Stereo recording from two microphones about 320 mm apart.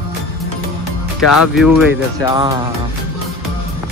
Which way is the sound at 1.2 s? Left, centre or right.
Left.